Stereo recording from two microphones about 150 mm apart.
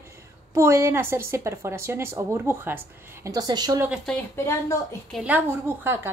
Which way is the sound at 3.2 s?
25° right (ahead or behind).